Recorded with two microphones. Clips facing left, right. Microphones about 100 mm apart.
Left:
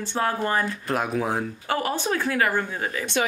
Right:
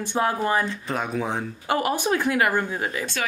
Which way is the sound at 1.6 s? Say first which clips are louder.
Right 5 dB; 15° right (ahead or behind).